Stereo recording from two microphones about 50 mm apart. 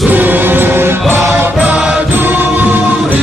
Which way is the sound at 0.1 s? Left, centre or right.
Right.